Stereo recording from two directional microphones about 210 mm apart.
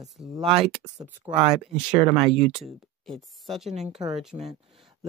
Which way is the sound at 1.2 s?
30° right (ahead or behind).